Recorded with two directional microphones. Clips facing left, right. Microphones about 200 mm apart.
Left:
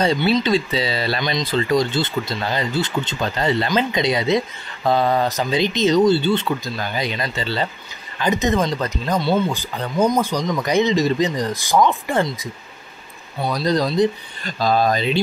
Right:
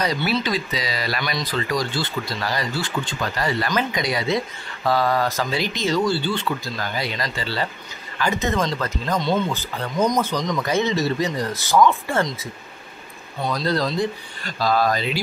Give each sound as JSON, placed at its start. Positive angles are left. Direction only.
{"t": 0.0, "sound": "speech", "side_deg": 30}
{"t": 9.9, "sound": "speech", "side_deg": 30}
{"t": 10.5, "sound": "speech", "side_deg": 15}
{"t": 13.4, "sound": "speech", "side_deg": 15}